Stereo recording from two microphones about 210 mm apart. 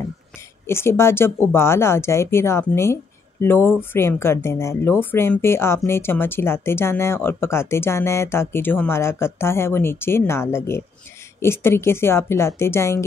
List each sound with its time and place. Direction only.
0.7 s speech: 10° left (ahead or behind)